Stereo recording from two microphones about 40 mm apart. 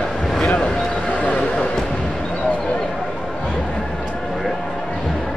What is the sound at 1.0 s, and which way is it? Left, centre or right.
Music, left.